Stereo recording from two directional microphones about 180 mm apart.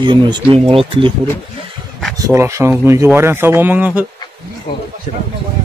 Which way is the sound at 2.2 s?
15° right (ahead or behind).